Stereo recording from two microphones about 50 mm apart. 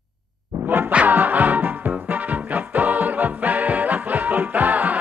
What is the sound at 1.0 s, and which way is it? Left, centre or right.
Music, right.